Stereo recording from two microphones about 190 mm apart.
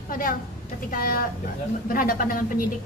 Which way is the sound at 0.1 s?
45° left (ahead or behind).